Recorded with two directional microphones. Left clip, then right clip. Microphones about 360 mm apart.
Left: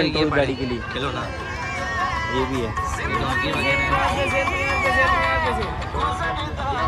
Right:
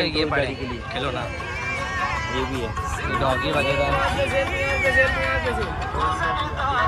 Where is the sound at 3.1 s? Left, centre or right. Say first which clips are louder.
Right 2 dB; centre.